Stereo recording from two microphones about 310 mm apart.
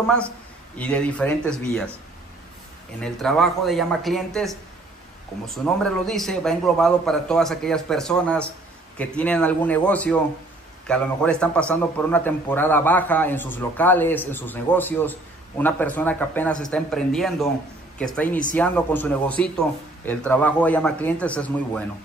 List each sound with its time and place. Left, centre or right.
0.7 s a man's voice: centre
3.0 s a man's voice: centre
5.8 s a man's voice: centre